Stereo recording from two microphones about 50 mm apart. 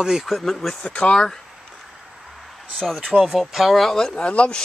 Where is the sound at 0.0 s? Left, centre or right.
Centre.